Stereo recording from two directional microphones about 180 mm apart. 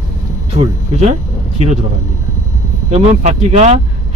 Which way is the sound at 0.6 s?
35° right (ahead or behind).